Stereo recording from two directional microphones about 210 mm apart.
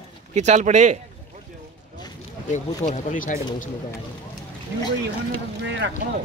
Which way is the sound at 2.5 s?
35° left (ahead or behind).